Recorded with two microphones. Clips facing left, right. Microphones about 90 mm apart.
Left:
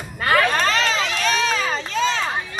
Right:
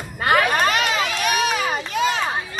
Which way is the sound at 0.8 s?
15° right (ahead or behind).